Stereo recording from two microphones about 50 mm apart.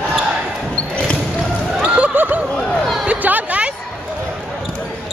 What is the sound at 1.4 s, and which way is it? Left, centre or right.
Basketball bounce, right.